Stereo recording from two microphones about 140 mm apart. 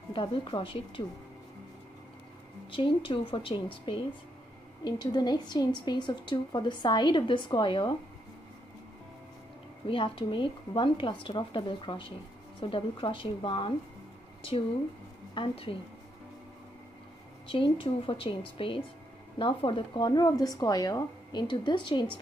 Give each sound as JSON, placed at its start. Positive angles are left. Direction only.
{"t": 0.1, "sound": "a woman's voice", "side_deg": 40}
{"t": 2.7, "sound": "a woman's voice", "side_deg": 40}
{"t": 4.8, "sound": "a woman's voice", "side_deg": 30}
{"t": 9.8, "sound": "a woman's voice", "side_deg": 40}
{"t": 15.3, "sound": "a woman's voice", "side_deg": 40}
{"t": 17.5, "sound": "a woman's voice", "side_deg": 40}